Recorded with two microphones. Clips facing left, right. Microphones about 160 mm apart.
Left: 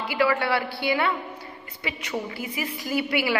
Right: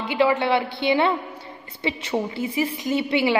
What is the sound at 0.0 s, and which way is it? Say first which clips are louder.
A man's voice: right 3 dB; 20° right (ahead or behind).